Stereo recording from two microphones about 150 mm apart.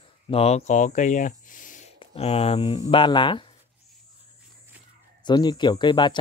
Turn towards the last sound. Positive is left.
turn(degrees=30)  # may be behind; listen again after turning